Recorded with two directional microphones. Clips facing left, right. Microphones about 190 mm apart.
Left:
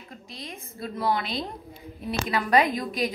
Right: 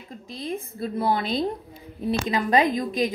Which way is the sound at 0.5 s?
30° right (ahead or behind).